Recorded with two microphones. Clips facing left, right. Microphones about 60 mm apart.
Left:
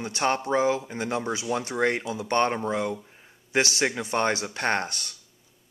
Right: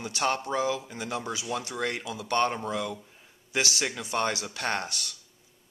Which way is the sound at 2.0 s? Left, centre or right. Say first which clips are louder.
Left 5 dB; centre.